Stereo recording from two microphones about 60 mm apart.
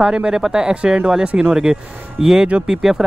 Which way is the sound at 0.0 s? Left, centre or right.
Centre.